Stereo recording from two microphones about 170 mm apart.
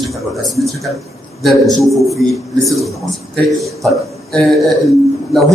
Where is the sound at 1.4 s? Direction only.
Centre (ahead or behind).